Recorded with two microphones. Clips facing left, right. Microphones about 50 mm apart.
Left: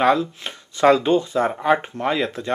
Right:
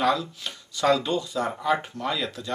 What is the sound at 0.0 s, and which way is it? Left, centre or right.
Speech, left.